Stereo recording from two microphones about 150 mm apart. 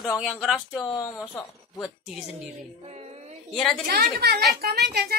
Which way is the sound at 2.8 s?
45° right (ahead or behind).